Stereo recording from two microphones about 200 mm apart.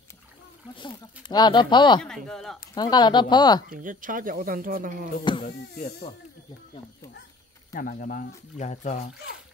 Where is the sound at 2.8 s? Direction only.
20° left (ahead or behind).